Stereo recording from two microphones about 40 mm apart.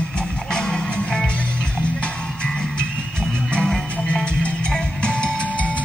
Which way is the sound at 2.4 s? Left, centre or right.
Left.